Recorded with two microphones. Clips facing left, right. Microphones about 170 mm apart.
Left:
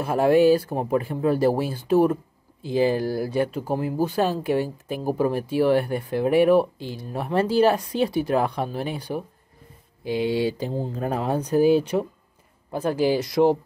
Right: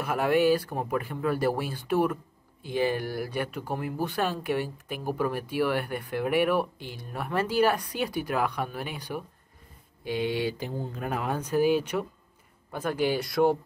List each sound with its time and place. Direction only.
0.0 s speech: 30° left (ahead or behind)